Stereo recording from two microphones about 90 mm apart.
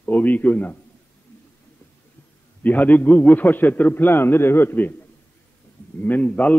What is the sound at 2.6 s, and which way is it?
A man's voice, 20° left (ahead or behind).